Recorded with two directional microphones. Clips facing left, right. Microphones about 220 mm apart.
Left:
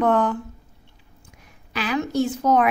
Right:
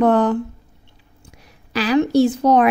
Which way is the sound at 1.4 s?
35° right (ahead or behind).